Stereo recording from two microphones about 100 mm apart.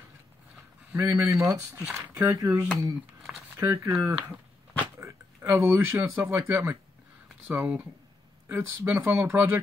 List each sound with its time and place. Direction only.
0.9 s speech: 25° right (ahead or behind)
3.7 s speech: 30° right (ahead or behind)